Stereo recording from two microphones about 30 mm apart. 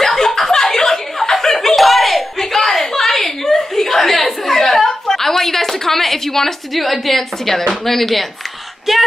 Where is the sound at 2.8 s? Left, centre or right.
Centre.